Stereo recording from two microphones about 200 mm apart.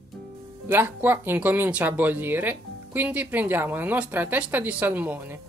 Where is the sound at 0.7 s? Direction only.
10° right (ahead or behind).